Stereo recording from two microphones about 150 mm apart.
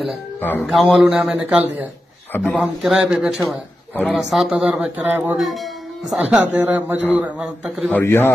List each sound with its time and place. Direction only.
0.4 s speech: 10° left (ahead or behind)
0.7 s speech: centre (ahead or behind)
2.3 s speech: 10° left (ahead or behind)
2.6 s a man's voice: 5° right (ahead or behind)
5.4 s speech: centre (ahead or behind)
7.9 s speech: 15° left (ahead or behind)